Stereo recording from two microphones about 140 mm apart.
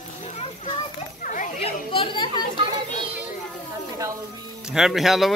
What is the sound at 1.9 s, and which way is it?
Children playing, 35° left (ahead or behind).